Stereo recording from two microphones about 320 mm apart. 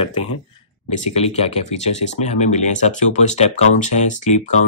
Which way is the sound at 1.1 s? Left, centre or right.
Centre.